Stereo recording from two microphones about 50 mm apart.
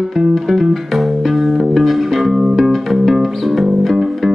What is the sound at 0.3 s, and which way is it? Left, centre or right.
Music, centre.